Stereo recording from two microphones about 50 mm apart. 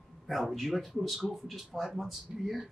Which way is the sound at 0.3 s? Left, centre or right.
Centre.